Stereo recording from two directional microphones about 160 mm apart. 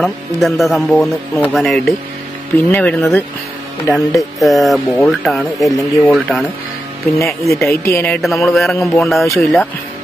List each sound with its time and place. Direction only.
0.0 s speech: centre (ahead or behind)
4.4 s speech: centre (ahead or behind)
7.2 s speech: 20° left (ahead or behind)
8.1 s speech: centre (ahead or behind)